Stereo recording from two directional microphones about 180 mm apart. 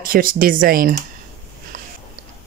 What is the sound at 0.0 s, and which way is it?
Speech, 50° right (ahead or behind).